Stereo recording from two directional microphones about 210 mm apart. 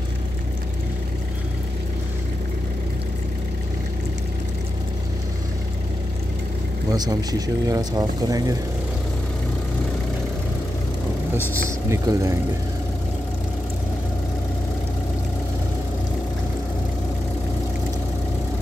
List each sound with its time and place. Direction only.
6.9 s speech: 15° right (ahead or behind)
11.5 s speech: 15° right (ahead or behind)